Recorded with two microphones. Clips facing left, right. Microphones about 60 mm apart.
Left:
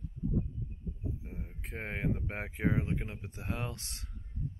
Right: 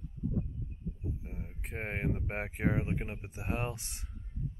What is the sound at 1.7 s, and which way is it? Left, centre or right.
Speech, centre.